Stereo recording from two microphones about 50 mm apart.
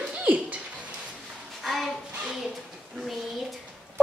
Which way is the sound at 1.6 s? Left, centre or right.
Centre.